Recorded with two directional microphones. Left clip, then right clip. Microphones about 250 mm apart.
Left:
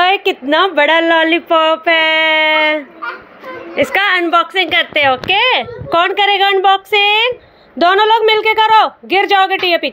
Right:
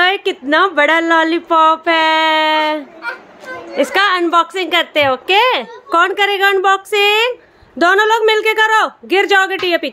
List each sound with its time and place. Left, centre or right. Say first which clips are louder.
0.0 s a woman's voice: left 2 dB; centre